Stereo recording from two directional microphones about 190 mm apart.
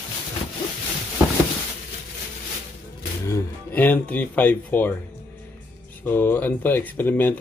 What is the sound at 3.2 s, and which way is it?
Speech, 15° left (ahead or behind).